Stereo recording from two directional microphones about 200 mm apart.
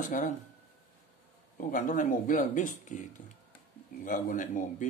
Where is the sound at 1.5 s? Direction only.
40° left (ahead or behind).